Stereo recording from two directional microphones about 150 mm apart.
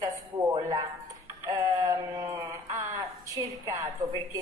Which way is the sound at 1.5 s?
25° right (ahead or behind).